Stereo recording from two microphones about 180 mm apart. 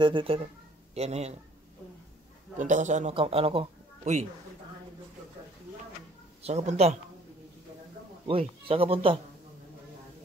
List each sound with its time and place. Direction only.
0.0 s a man's voice: 30° right (ahead or behind)
2.6 s a man's voice: 40° right (ahead or behind)
3.2 s speech: 30° right (ahead or behind)
6.4 s a man's voice: 35° right (ahead or behind)
8.3 s a man's voice: 30° right (ahead or behind)